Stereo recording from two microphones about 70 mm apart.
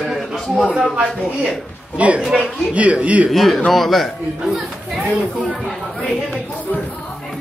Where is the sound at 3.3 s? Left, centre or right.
Centre.